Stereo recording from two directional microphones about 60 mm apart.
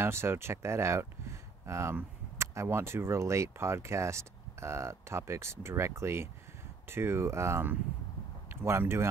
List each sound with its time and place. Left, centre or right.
0.0 s speech: right